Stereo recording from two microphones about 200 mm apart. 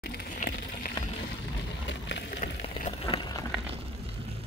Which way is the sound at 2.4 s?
40° left (ahead or behind).